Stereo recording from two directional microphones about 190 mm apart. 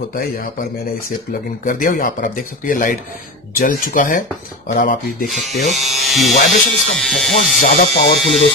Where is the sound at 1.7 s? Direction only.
45° left (ahead or behind).